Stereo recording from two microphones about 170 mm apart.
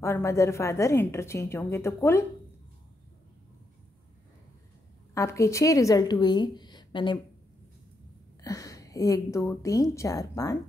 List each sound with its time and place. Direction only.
0.0 s a woman's voice: 15° left (ahead or behind)
5.1 s speech: 20° left (ahead or behind)
8.4 s a woman's voice: 20° left (ahead or behind)